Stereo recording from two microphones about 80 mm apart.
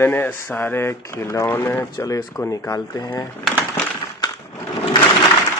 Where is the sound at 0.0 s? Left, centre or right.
Left.